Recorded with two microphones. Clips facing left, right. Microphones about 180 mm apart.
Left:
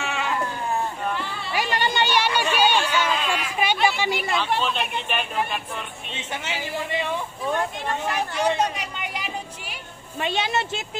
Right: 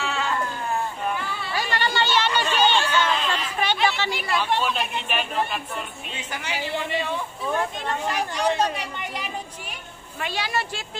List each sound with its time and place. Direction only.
0.0 s sheep: 15° left (ahead or behind)
1.5 s a sound: 15° left (ahead or behind)
4.4 s speech: 10° right (ahead or behind)
6.1 s speech: 25° left (ahead or behind)
10.2 s speech: 20° left (ahead or behind)